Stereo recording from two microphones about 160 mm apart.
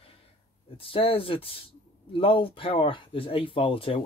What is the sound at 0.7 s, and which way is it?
Speech, 35° left (ahead or behind).